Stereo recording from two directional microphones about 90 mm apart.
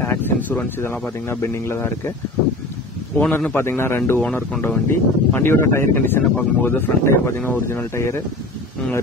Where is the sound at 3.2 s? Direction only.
20° left (ahead or behind).